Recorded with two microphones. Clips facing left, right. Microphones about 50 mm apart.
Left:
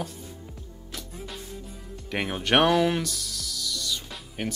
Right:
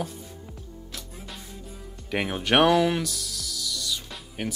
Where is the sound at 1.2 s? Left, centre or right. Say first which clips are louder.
Left 3 dB; centre.